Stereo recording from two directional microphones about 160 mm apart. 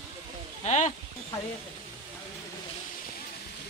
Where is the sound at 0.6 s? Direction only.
45° left (ahead or behind).